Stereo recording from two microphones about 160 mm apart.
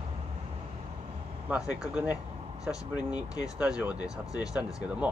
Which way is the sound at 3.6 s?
5° right (ahead or behind).